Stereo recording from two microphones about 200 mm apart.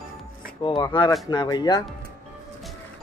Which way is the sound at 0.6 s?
25° left (ahead or behind).